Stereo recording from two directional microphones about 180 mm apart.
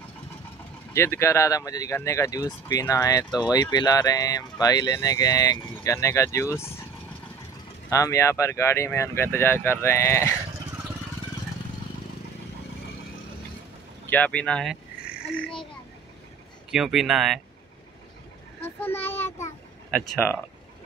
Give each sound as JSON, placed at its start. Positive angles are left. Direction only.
{"t": 0.9, "sound": "speech", "side_deg": 15}
{"t": 7.9, "sound": "speech", "side_deg": 15}
{"t": 14.0, "sound": "speech", "side_deg": 10}
{"t": 16.7, "sound": "speech", "side_deg": 0}
{"t": 18.6, "sound": "speech", "side_deg": 10}
{"t": 19.9, "sound": "speech", "side_deg": 0}